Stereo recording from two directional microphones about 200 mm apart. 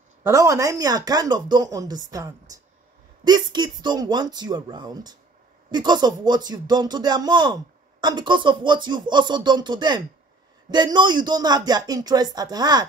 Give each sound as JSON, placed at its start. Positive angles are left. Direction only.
{"t": 0.3, "sound": "speech", "side_deg": -15}